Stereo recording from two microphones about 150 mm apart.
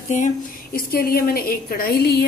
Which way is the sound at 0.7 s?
90° left.